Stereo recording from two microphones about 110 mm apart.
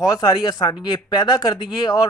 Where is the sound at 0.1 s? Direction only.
45° left (ahead or behind).